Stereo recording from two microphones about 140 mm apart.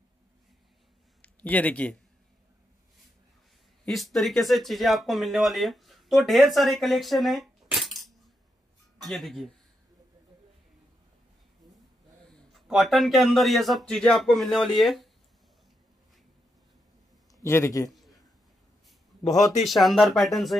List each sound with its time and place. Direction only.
1.2 s speech: 10° left (ahead or behind)
3.8 s speech: centre (ahead or behind)
7.6 s a sound: centre (ahead or behind)
9.0 s speech: centre (ahead or behind)
12.3 s speech: 5° left (ahead or behind)
17.4 s a man's voice: 20° left (ahead or behind)
17.8 s a sound: centre (ahead or behind)
19.6 s speech: centre (ahead or behind)